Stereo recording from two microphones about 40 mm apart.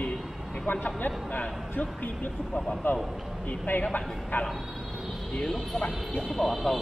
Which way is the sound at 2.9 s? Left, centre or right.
Left.